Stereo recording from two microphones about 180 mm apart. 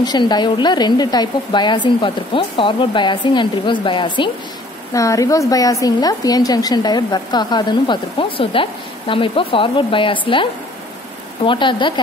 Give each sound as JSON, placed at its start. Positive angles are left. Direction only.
{"t": 0.0, "sound": "a woman's voice", "side_deg": 25}